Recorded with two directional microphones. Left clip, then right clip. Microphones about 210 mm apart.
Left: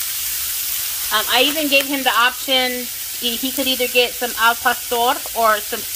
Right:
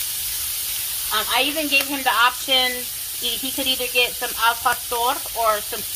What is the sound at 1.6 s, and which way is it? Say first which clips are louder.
Sizzle: left 3 dB; 30° left (ahead or behind).